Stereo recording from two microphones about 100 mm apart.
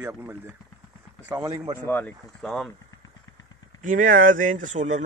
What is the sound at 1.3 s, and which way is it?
Speech, 35° right (ahead or behind).